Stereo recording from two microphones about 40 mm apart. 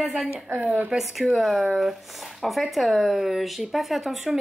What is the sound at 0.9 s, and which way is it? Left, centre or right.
Speech, centre.